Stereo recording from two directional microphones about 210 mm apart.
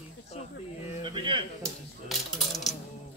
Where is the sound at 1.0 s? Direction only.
20° right (ahead or behind).